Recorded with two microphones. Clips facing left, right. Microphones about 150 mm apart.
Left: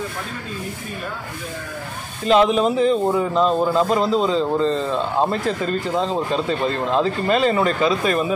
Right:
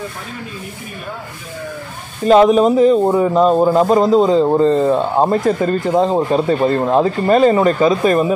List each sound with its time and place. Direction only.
2.2 s speech: 45° right (ahead or behind)